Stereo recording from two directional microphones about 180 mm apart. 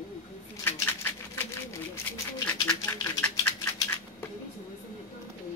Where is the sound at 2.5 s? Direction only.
20° left (ahead or behind).